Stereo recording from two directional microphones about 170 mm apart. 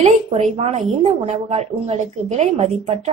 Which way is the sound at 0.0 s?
40° right (ahead or behind).